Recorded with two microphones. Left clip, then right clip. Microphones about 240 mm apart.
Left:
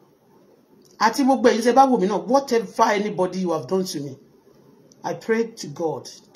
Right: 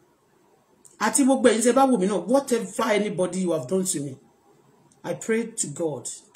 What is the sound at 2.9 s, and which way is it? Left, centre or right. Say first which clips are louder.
Speech: left 2 dB; centre.